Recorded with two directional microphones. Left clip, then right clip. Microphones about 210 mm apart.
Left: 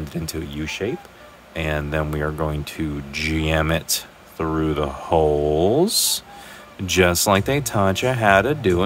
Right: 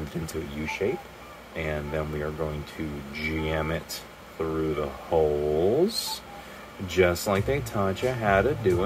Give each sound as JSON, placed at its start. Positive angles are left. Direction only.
{"t": 0.3, "sound": "speech", "side_deg": 45}